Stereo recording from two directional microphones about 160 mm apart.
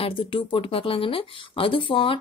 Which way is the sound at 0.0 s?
35° left (ahead or behind).